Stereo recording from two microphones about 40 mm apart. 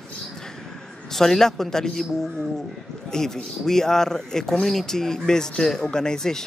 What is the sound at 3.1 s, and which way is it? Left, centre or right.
Speech, centre.